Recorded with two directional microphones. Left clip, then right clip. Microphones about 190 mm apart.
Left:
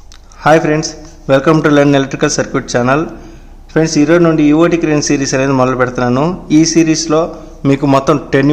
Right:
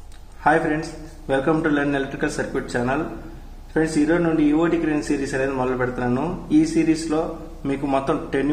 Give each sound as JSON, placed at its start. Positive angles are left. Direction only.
{"t": 0.4, "sound": "speech", "side_deg": 60}